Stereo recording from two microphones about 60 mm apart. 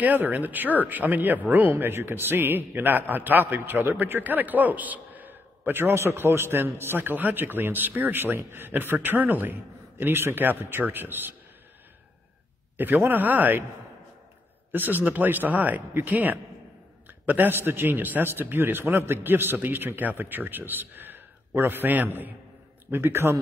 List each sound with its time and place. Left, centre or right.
0.0 s a man's voice: right
12.7 s a man's voice: right
14.7 s a man's voice: right